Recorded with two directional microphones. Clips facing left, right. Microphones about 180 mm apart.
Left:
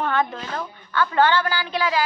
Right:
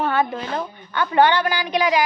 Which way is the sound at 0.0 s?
10° right (ahead or behind).